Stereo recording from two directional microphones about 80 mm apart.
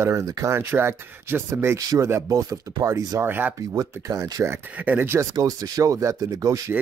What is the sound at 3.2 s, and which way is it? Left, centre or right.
Speech, right.